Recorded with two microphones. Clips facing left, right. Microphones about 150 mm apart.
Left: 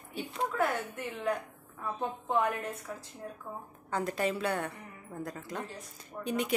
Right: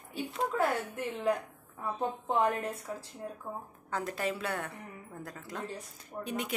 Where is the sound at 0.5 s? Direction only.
30° right (ahead or behind).